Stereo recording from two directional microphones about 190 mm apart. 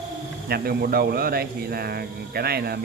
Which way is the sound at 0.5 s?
55° right (ahead or behind).